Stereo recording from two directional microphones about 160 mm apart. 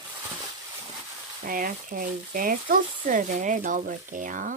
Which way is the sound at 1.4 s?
60° right (ahead or behind).